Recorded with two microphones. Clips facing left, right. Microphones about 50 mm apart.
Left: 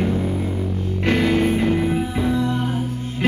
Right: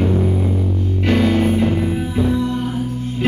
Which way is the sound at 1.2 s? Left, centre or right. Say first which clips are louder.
Right 3 dB; centre.